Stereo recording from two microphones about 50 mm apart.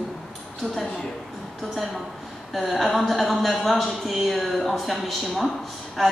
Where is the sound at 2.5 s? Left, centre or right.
Centre.